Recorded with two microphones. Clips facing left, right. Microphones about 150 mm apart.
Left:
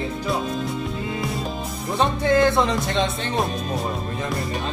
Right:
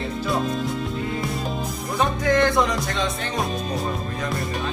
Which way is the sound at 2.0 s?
25° left (ahead or behind).